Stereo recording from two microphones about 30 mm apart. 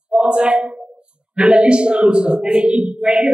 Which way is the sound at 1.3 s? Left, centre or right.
Right.